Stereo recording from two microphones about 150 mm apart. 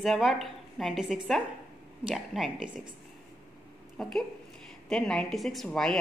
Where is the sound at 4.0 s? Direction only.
5° left (ahead or behind).